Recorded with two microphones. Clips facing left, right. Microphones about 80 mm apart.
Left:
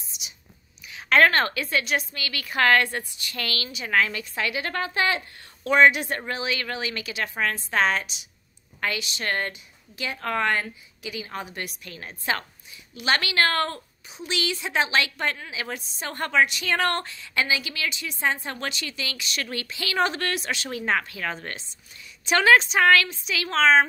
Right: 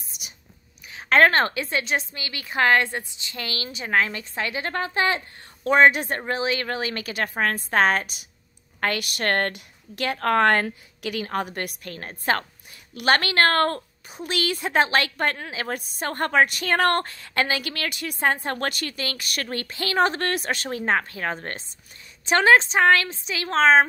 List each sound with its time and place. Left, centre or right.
0.1 s whispering: right
0.9 s a woman's voice: right